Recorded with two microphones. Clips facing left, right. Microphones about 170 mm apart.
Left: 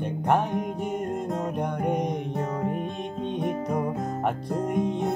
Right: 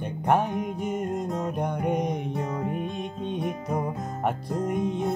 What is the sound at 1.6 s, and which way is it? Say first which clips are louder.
Music: right 1 dB; centre (ahead or behind).